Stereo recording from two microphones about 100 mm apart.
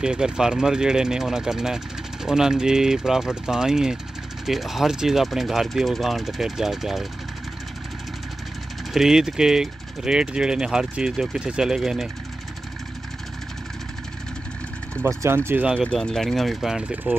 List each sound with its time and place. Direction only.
0.0 s speech: 10° right (ahead or behind)
8.9 s speech: 5° right (ahead or behind)
15.0 s speech: 25° right (ahead or behind)
15.6 s speech: 10° right (ahead or behind)
15.9 s speech: 5° left (ahead or behind)